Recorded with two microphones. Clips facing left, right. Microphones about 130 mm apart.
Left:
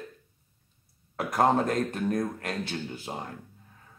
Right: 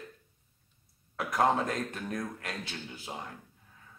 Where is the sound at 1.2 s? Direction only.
45° left (ahead or behind).